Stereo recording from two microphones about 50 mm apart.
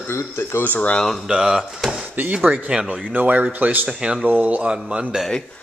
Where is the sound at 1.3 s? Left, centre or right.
Centre.